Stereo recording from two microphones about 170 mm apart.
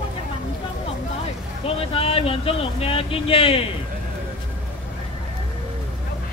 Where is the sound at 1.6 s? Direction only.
35° left (ahead or behind).